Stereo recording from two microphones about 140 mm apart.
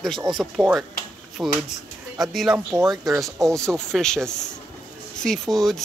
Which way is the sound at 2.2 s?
Centre (ahead or behind).